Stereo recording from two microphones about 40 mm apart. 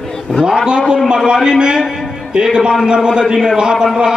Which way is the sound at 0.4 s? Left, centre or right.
Centre.